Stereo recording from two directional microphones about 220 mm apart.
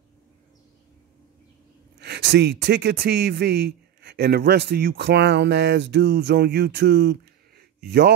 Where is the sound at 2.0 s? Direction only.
50° right (ahead or behind).